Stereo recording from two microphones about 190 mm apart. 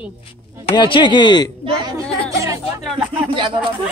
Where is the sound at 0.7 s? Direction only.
25° left (ahead or behind).